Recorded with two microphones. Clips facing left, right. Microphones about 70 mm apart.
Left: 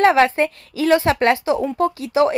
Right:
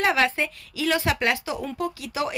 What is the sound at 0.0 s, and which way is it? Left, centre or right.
Speech, left.